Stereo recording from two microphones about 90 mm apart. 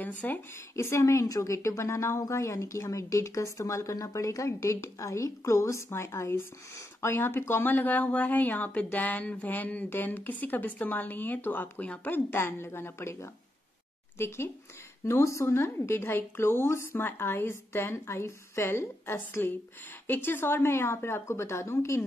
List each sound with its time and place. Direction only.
0.0 s speech: 20° left (ahead or behind)
0.7 s a woman's voice: 30° left (ahead or behind)